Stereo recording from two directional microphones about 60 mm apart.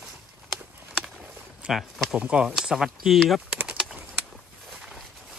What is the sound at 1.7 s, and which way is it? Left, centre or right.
Speech, centre.